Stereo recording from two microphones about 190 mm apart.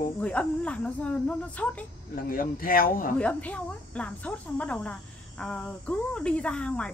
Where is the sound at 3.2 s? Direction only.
5° left (ahead or behind).